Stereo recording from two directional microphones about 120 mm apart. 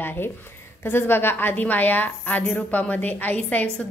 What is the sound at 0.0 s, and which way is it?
A woman's voice, 15° left (ahead or behind).